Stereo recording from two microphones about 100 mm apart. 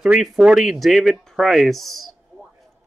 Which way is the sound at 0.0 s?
Centre (ahead or behind).